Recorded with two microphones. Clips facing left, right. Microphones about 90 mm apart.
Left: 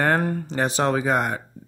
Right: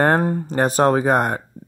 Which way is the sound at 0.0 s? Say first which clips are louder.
Right 4 dB; 35° right (ahead or behind).